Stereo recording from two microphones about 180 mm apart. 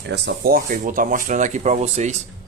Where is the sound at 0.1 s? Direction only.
65° right (ahead or behind).